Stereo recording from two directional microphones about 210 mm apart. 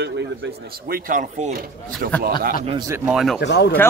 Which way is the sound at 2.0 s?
50° right (ahead or behind).